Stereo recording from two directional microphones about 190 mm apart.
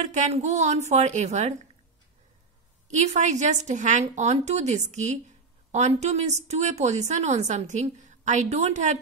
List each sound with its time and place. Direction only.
0.0 s a woman's voice: 40° right (ahead or behind)
2.9 s a woman's voice: 35° right (ahead or behind)